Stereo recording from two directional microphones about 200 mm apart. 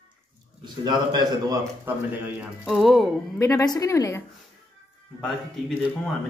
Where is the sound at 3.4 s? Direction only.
15° left (ahead or behind).